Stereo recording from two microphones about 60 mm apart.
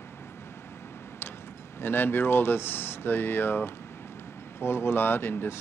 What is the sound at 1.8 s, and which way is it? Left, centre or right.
Speech, left.